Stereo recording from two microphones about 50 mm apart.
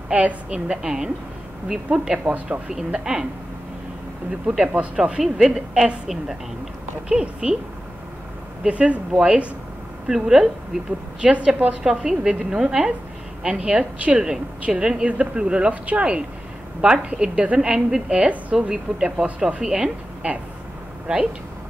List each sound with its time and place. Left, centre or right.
0.1 s speech: right
2.3 s speech: right
2.9 s speech: centre
4.3 s speech: centre
5.2 s speech: centre
7.1 s speech: centre
8.6 s speech: right
10.0 s speech: centre
11.1 s speech: right
11.8 s speech: centre
17.7 s speech: centre
18.2 s speech: right